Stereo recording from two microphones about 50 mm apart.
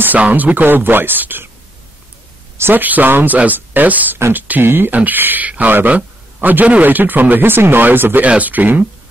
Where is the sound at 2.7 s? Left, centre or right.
Right.